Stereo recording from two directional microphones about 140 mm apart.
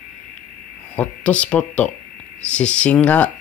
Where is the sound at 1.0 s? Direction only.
10° left (ahead or behind).